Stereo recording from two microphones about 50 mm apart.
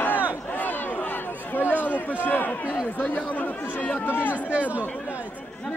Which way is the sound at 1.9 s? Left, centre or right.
Left.